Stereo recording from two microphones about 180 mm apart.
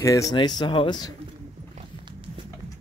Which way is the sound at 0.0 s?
20° left (ahead or behind).